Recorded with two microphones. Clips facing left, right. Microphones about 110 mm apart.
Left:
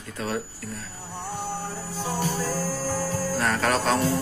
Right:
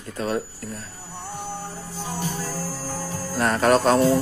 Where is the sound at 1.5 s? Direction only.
15° right (ahead or behind).